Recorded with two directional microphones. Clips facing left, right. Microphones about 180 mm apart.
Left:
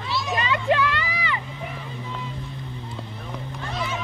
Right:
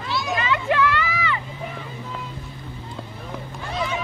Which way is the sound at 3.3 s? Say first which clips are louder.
Right 1 dB; centre (ahead or behind).